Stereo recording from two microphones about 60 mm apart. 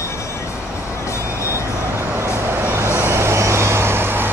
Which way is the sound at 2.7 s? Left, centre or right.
Right.